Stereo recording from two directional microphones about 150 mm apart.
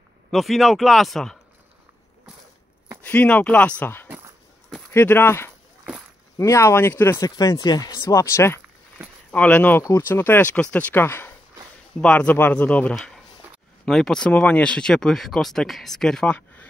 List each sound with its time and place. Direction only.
0.3 s speech: centre (ahead or behind)
3.0 s speech: 10° left (ahead or behind)